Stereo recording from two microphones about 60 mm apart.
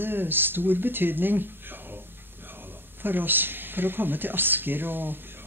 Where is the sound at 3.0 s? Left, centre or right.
Right.